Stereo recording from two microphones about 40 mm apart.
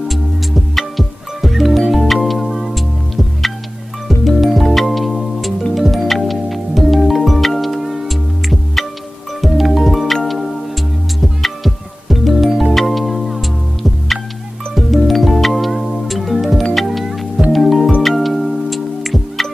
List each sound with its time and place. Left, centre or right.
0.7 s music: centre
4.2 s music: centre
14.8 s music: centre